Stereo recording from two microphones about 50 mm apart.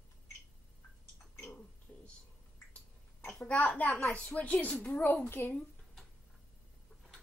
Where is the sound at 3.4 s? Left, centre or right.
Left.